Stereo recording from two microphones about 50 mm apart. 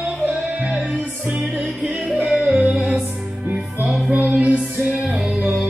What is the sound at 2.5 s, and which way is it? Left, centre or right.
Music, right.